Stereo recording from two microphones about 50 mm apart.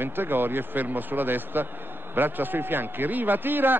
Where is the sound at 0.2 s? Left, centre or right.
Right.